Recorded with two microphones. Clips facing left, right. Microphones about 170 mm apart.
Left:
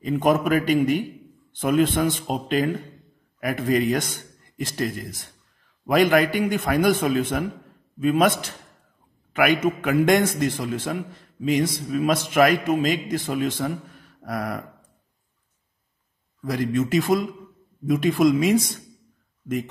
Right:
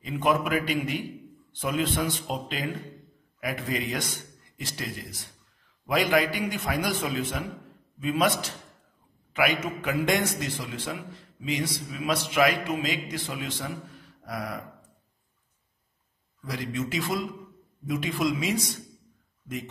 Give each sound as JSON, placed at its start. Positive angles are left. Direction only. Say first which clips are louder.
{"t": 0.0, "sound": "a man's voice", "louder": "left 5 dB", "side_deg": 45}
{"t": 14.2, "sound": "a sound", "louder": "left 6 dB", "side_deg": 55}
{"t": 16.4, "sound": "a man's voice", "louder": "left 8 dB", "side_deg": 50}